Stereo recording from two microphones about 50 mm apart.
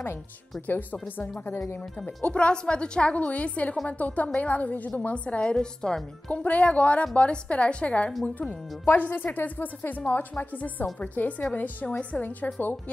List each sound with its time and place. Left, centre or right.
1.0 s speech: left
2.0 s a woman's voice: left
5.4 s a woman's voice: centre
6.3 s a woman's voice: left